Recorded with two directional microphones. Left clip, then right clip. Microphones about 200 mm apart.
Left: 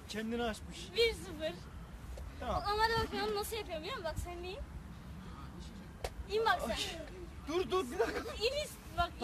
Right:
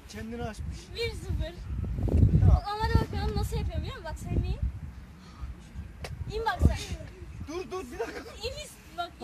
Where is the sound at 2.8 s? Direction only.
15° left (ahead or behind).